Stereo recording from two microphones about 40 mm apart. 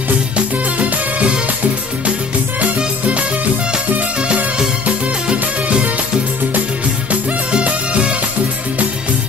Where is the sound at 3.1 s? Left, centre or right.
Right.